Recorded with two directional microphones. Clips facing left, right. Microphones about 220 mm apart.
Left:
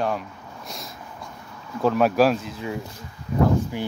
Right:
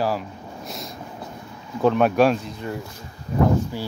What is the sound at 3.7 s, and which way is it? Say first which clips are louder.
Speech: left 1 dB; 15° left (ahead or behind).